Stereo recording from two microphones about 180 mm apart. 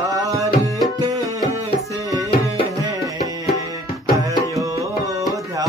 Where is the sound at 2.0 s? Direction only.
20° right (ahead or behind).